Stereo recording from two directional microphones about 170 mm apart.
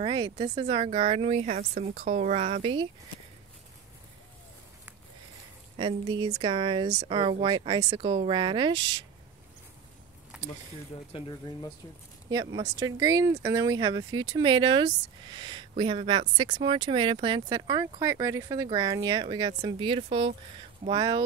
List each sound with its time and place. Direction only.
0.0 s speech: 30° right (ahead or behind)
1.6 s a woman's voice: 55° right (ahead or behind)
2.0 s speech: 40° right (ahead or behind)
5.8 s speech: 30° right (ahead or behind)
11.1 s speech: 30° left (ahead or behind)
12.3 s speech: 20° right (ahead or behind)